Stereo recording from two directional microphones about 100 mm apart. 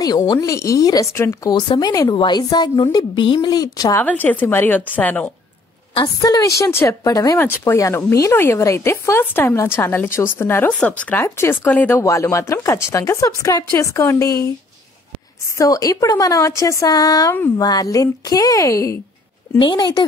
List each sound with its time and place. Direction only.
0.0 s a woman's voice: 40° left (ahead or behind)
1.1 s speech: 25° left (ahead or behind)
1.5 s a woman's voice: 45° left (ahead or behind)
4.0 s a woman's voice: 15° left (ahead or behind)
5.9 s a woman's voice: 40° left (ahead or behind)
7.1 s a woman's voice: 35° left (ahead or behind)
7.3 s speech: 25° left (ahead or behind)
10.7 s a woman's voice: 10° left (ahead or behind)
12.0 s a woman's voice: 30° left (ahead or behind)
15.5 s a woman's voice: 35° left (ahead or behind)
19.6 s a woman's voice: 45° left (ahead or behind)